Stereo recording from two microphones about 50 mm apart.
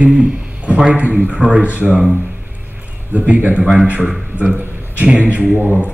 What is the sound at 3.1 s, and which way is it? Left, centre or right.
Speech, right.